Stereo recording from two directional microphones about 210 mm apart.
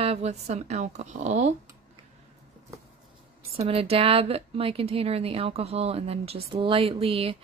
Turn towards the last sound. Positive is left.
turn(degrees=-25)  # may be behind; listen again after turning